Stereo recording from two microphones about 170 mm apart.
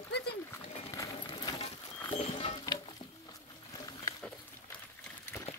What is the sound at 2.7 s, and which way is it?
Music, 20° left (ahead or behind).